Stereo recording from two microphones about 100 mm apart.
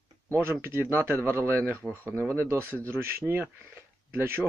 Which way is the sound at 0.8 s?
20° right (ahead or behind).